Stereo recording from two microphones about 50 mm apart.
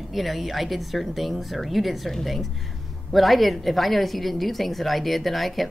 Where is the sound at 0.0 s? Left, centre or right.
Centre.